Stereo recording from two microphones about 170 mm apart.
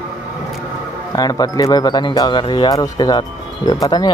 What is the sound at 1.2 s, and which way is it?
Speech, 20° left (ahead or behind).